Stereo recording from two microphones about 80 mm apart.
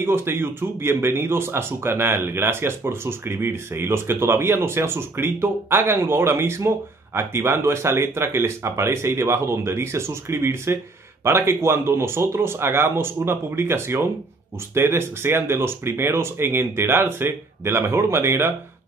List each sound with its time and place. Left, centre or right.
0.0 s speech: right